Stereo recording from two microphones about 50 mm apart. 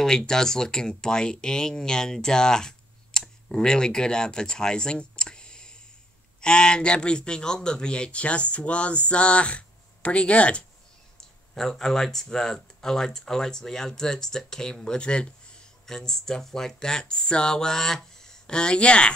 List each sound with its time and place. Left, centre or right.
0.0 s speech: centre
11.1 s speech: centre
15.9 s speech: centre